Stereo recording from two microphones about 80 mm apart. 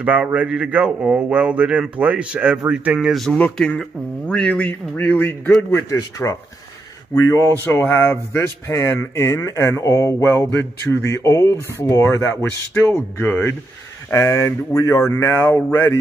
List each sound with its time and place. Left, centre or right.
0.0 s speech: centre
3.1 s a man's voice: centre
5.7 s speech: left